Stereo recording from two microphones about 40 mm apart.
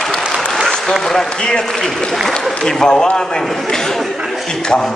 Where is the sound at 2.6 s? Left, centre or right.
Centre.